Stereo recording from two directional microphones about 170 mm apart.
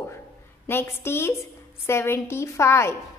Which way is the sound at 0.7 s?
15° left (ahead or behind).